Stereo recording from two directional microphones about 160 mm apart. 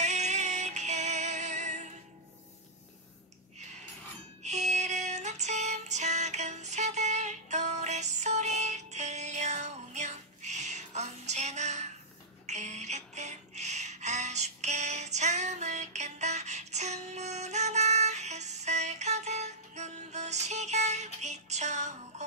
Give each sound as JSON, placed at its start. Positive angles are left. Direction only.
{"t": 0.0, "sound": "synthetic singing", "side_deg": -45}
{"t": 4.4, "sound": "music", "side_deg": -45}
{"t": 12.4, "sound": "a sound", "side_deg": -45}